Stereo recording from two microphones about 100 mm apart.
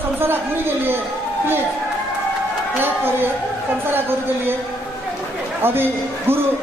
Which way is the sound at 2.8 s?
20° right (ahead or behind).